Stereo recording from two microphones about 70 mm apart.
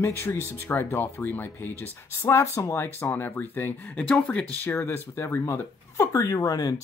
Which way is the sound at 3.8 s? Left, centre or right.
Centre.